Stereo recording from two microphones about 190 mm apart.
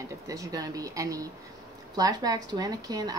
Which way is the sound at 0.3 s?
20° right (ahead or behind).